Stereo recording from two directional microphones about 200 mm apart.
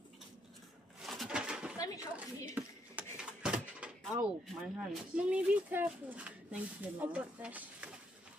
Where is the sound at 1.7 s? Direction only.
15° left (ahead or behind).